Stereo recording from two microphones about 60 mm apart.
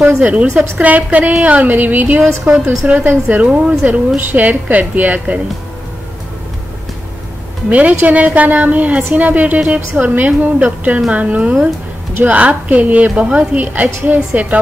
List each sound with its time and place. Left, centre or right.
0.2 s a woman's voice: right
3.4 s a woman's voice: centre
7.7 s a woman's voice: right